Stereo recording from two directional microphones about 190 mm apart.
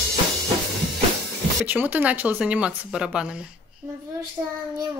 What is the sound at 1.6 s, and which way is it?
A woman's voice, 10° right (ahead or behind).